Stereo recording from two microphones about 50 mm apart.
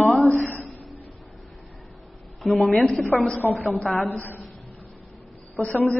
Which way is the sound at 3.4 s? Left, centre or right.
Left.